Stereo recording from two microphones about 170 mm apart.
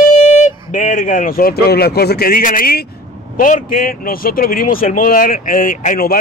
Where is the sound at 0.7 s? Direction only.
50° left (ahead or behind).